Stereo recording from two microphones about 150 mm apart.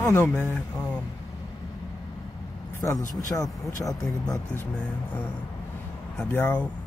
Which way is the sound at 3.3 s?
15° left (ahead or behind).